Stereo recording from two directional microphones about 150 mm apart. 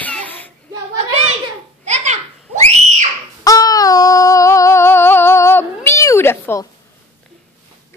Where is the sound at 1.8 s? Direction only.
50° right (ahead or behind).